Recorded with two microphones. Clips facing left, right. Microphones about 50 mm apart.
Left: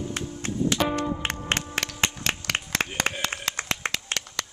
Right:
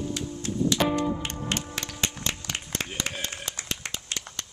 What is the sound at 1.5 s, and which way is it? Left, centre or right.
Music, left.